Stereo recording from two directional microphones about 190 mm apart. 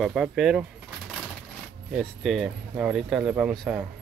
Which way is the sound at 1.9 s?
Centre (ahead or behind).